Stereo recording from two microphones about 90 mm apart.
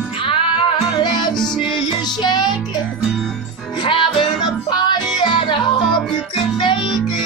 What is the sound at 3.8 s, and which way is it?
Music, 65° left (ahead or behind).